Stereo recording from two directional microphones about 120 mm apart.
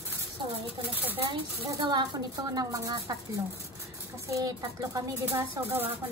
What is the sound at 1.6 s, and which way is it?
A woman's voice, 35° right (ahead or behind).